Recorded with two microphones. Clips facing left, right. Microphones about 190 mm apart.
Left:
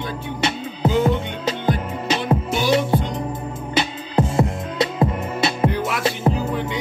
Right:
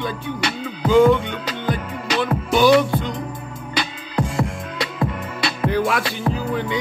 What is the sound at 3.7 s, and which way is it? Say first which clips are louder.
Music: left 4 dB; 25° left (ahead or behind).